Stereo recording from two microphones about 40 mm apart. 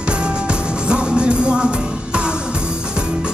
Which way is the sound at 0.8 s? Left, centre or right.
Right.